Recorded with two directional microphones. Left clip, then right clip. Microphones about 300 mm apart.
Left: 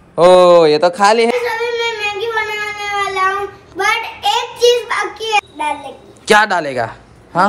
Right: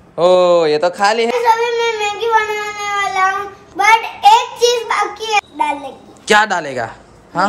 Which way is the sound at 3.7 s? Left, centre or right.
Centre.